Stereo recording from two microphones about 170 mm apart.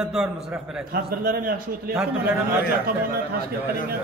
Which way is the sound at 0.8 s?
60° right (ahead or behind).